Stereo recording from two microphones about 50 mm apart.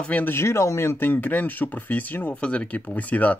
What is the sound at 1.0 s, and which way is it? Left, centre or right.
Speech, left.